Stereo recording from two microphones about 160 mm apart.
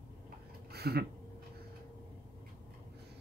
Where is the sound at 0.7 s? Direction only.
85° right.